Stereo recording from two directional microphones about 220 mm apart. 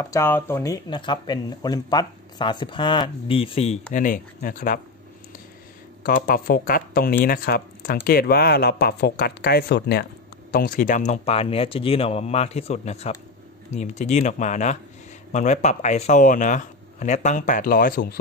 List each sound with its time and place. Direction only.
0.0 s speech: 10° left (ahead or behind)
3.9 s speech: 40° left (ahead or behind)
6.0 s speech: 40° left (ahead or behind)